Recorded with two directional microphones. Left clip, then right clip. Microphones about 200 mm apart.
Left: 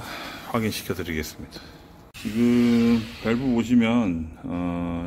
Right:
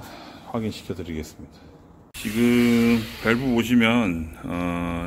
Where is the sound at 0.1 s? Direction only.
Centre (ahead or behind).